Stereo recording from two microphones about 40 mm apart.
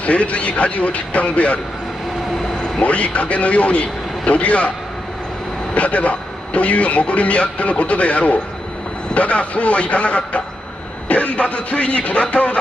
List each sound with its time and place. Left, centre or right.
0.0 s a man's voice: left
2.8 s a man's voice: left
5.8 s a man's voice: left